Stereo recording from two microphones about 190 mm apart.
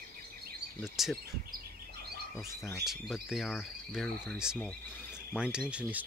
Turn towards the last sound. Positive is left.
turn(degrees=-5)  # may be behind; listen again after turning